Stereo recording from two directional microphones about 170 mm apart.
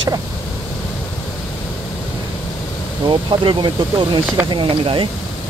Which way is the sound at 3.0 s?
30° right (ahead or behind).